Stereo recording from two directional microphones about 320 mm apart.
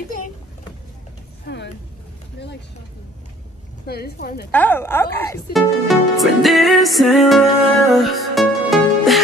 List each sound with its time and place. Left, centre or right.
1.4 s a sound: left
3.8 s speech: left
4.5 s speech: centre